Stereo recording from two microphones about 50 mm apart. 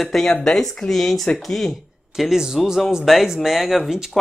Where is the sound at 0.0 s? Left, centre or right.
Centre.